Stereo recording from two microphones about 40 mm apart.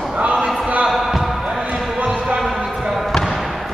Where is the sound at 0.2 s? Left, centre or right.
Right.